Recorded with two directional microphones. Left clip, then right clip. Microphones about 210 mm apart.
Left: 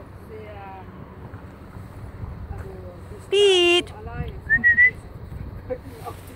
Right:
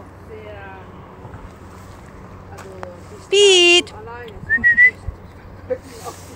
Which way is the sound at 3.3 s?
5° right (ahead or behind).